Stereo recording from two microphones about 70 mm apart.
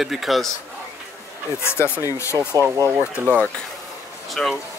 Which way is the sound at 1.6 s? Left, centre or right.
Left.